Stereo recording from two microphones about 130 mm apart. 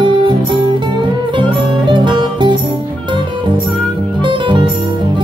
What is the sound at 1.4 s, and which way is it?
Music, 35° right (ahead or behind).